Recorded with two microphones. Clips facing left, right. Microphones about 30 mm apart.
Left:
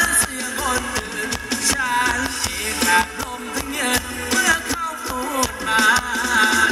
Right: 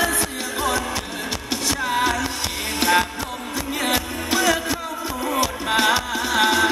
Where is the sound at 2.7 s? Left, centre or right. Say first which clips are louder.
Left 1 dB; right.